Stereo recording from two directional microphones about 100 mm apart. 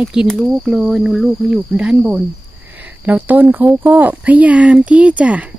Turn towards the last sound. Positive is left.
turn(degrees=-15)  # may be behind; listen again after turning